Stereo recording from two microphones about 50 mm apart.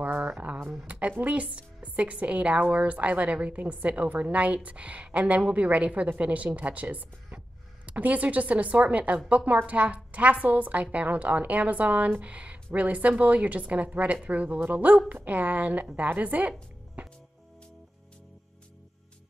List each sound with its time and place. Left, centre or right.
0.0 s a sound: right
0.8 s a woman's voice: right
17.0 s music: right